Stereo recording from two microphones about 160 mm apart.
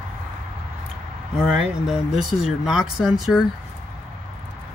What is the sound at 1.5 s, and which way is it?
Speech, 5° right (ahead or behind).